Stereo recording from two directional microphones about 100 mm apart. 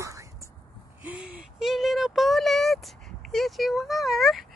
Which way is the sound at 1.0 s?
15° right (ahead or behind).